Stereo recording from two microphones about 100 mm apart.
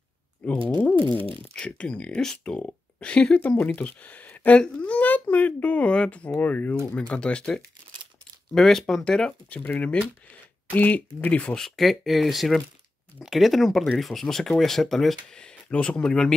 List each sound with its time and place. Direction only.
0.4 s speech: 15° left (ahead or behind)
1.1 s speech: 60° right (ahead or behind)
1.5 s speech: 10° left (ahead or behind)